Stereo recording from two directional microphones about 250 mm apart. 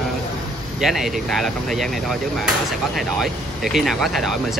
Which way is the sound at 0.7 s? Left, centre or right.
Centre.